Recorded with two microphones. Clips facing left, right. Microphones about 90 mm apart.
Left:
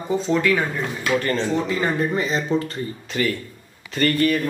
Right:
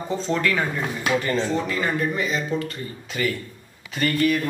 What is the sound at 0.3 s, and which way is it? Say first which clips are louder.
A man's voice: left 2 dB; 10° left (ahead or behind).